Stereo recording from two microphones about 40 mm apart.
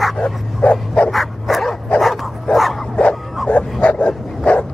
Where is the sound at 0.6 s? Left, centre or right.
Left.